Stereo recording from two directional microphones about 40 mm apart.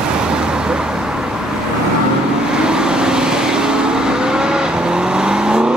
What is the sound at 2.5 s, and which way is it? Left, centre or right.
Vehicle, centre.